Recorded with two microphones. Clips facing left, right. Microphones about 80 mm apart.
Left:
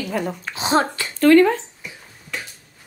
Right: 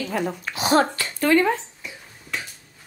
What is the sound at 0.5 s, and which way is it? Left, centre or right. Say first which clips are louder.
Speech: even; left.